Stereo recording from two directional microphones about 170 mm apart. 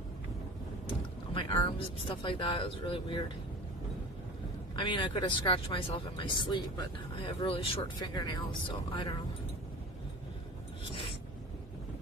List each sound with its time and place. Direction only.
0.8 s vehicle: 30° left (ahead or behind)
2.0 s speech: 30° left (ahead or behind)
4.7 s speech: 25° left (ahead or behind)
10.9 s a sound: 30° left (ahead or behind)